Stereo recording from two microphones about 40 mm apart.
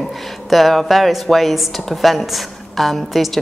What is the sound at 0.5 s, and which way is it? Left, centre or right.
A woman's voice, centre.